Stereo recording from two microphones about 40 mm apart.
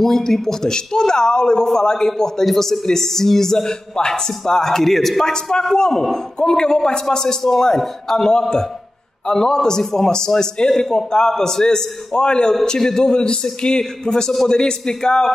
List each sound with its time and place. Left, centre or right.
0.0 s a man's voice: centre